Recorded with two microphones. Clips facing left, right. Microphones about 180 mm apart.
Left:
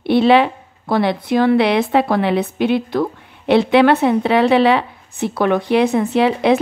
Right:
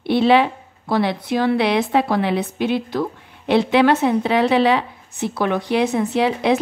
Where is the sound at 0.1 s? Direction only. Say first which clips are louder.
Left 3 dB; 65° left (ahead or behind).